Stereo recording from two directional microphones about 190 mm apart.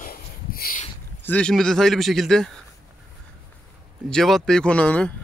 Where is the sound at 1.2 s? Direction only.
5° left (ahead or behind).